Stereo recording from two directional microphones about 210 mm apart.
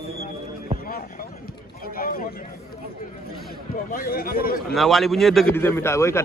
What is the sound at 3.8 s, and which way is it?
Speech, 40° left (ahead or behind).